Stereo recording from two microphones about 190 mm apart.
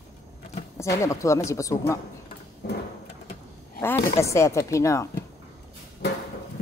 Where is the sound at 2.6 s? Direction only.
60° left (ahead or behind).